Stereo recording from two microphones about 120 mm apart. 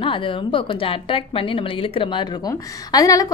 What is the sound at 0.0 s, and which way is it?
A woman's voice, 45° left (ahead or behind).